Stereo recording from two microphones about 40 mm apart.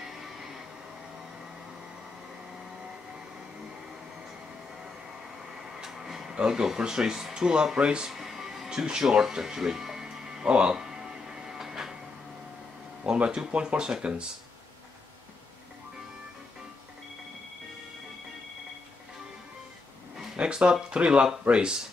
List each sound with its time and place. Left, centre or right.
0.0 s music: centre
5.8 s a sound: centre
6.3 s speech: centre
8.1 s music: centre
13.0 s speech: right
20.3 s speech: right